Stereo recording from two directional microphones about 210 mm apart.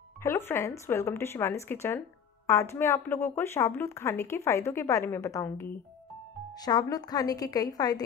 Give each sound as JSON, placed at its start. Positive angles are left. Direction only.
{"t": 0.2, "sound": "speech", "side_deg": 10}